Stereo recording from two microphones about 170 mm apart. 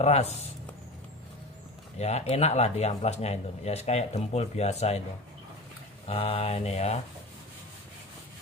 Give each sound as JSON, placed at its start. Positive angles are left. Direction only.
{"t": 0.0, "sound": "speech", "side_deg": 40}
{"t": 2.0, "sound": "speech", "side_deg": 40}
{"t": 6.0, "sound": "speech", "side_deg": 35}